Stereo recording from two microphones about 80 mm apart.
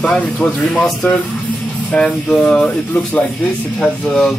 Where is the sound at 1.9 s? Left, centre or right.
Centre.